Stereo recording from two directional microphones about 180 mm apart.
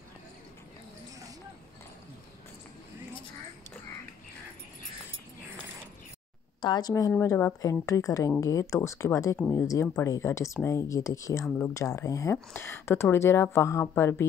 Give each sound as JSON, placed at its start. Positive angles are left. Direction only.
{"t": 6.6, "sound": "a woman's voice", "side_deg": 20}